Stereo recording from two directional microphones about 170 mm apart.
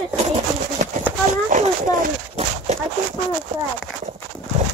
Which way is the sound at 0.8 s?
50° right (ahead or behind).